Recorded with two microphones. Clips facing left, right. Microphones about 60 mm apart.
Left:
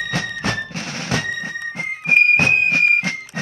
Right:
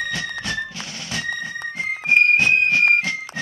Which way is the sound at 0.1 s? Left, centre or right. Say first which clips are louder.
Left 3 dB; left.